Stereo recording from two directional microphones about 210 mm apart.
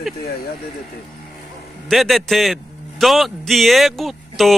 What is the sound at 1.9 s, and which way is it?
Speech, centre (ahead or behind).